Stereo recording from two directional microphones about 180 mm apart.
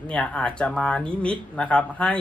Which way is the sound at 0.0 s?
5° left (ahead or behind).